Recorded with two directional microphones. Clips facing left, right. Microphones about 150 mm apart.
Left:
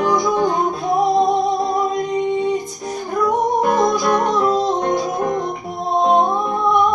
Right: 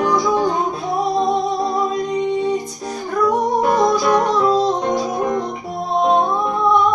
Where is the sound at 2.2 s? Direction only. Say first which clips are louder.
Even; 50° left (ahead or behind).